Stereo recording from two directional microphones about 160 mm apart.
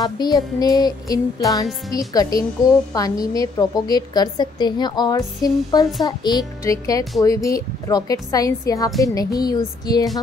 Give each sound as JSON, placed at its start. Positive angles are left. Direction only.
{"t": 0.0, "sound": "a child's voice", "side_deg": 25}